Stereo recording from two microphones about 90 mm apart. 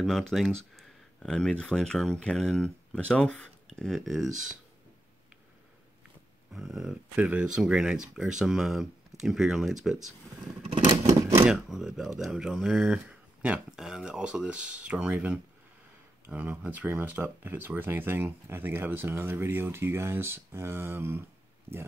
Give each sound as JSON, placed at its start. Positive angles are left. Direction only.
{"t": 0.0, "sound": "speech", "side_deg": 0}
{"t": 6.5, "sound": "speech", "side_deg": -5}
{"t": 11.4, "sound": "speech", "side_deg": -5}
{"t": 16.3, "sound": "speech", "side_deg": -15}